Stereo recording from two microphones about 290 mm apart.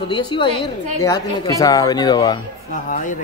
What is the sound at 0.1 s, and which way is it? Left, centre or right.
A man's voice, centre.